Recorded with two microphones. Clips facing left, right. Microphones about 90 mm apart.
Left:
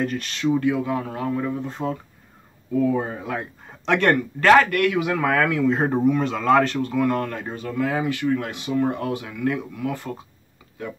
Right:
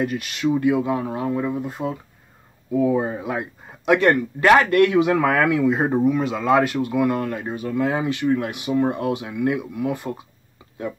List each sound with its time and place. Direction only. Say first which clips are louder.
0.0 s a man's voice: right 1 dB; 10° right (ahead or behind)
4.4 s a man's voice: right 1 dB; 15° right (ahead or behind)